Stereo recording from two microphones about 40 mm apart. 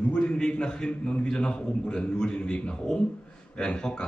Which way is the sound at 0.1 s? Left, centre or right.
Left.